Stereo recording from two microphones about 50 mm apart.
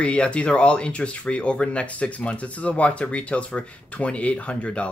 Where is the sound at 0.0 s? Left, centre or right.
Left.